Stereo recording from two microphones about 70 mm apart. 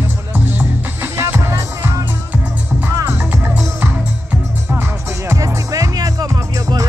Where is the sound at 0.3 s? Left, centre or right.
Right.